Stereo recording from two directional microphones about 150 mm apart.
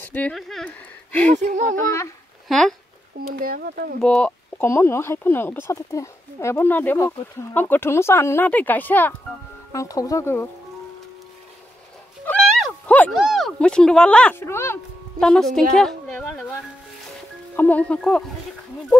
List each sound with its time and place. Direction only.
0.0 s speech: 10° left (ahead or behind)
1.3 s speech: 55° right (ahead or behind)
1.9 s speech: 20° left (ahead or behind)
2.4 s speech: centre (ahead or behind)
3.3 s speech: 70° right (ahead or behind)
4.0 s speech: 5° left (ahead or behind)
4.6 s speech: 15° left (ahead or behind)
12.3 s a sound: centre (ahead or behind)
13.1 s speech: centre (ahead or behind); by 14.8 s 15° left (ahead or behind)
15.1 s a woman's voice: 5° left (ahead or behind)
17.6 s speech: 10° left (ahead or behind)